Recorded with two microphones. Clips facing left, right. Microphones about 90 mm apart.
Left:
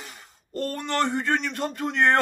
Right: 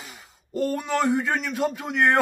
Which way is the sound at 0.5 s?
5° right (ahead or behind).